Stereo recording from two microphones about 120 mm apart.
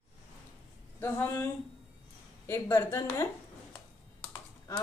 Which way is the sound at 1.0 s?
20° left (ahead or behind).